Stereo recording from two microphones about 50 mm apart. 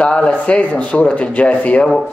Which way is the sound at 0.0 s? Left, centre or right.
Left.